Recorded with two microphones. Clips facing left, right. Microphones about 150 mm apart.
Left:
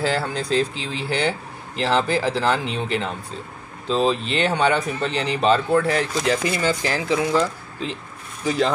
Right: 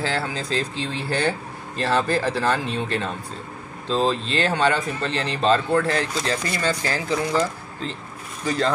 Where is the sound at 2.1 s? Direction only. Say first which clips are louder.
Left 1 dB; centre (ahead or behind).